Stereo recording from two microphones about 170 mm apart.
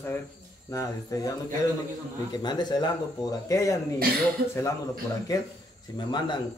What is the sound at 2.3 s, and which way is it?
Speech, 25° left (ahead or behind).